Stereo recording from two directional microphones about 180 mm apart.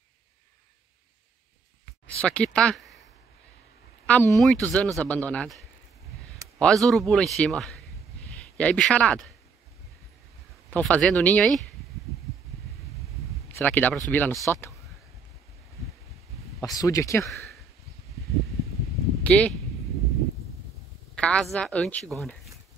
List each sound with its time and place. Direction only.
2.1 s speech: 5° left (ahead or behind)
4.0 s speech: 10° left (ahead or behind)
6.6 s speech: centre (ahead or behind)
10.7 s speech: 5° left (ahead or behind)
13.6 s speech: 10° left (ahead or behind)
16.6 s speech: 20° left (ahead or behind)
19.3 s speech: 5° left (ahead or behind)
21.1 s speech: 5° left (ahead or behind)